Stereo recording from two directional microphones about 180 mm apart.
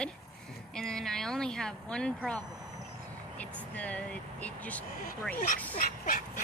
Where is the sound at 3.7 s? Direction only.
10° left (ahead or behind).